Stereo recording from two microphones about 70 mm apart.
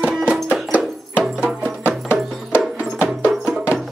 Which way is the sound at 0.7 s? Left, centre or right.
Right.